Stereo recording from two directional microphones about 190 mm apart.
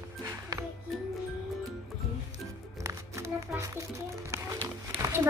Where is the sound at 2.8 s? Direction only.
15° right (ahead or behind).